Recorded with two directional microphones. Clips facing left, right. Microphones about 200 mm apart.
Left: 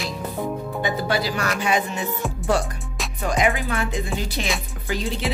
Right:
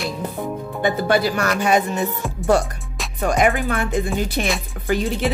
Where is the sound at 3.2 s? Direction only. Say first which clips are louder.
Right 4 dB; 55° right (ahead or behind).